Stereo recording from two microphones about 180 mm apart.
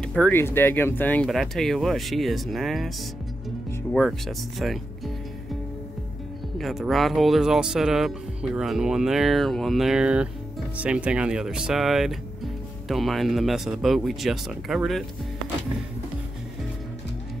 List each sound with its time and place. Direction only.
0.0 s speech: 5° left (ahead or behind)
3.9 s speech: centre (ahead or behind)
6.6 s speech: centre (ahead or behind)